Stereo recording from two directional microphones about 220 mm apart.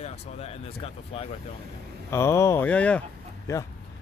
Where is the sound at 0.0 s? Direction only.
30° left (ahead or behind).